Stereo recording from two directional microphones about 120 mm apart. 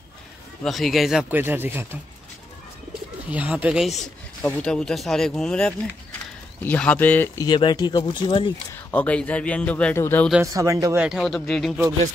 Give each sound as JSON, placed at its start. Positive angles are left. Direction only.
{"t": 0.7, "sound": "speech", "side_deg": 0}
{"t": 1.3, "sound": "speech", "side_deg": -15}
{"t": 3.3, "sound": "speech", "side_deg": -10}
{"t": 4.5, "sound": "speech", "side_deg": 10}
{"t": 7.4, "sound": "speech", "side_deg": 35}
{"t": 8.9, "sound": "speech", "side_deg": 10}
{"t": 9.9, "sound": "speech", "side_deg": 20}
{"t": 10.4, "sound": "speech", "side_deg": -25}
{"t": 11.0, "sound": "speech", "side_deg": -5}